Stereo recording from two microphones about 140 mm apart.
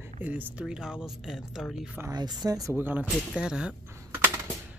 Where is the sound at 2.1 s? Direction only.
30° right (ahead or behind); by 3.7 s 5° right (ahead or behind).